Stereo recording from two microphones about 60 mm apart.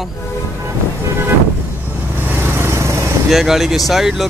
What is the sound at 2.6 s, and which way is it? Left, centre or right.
Vehicle, right.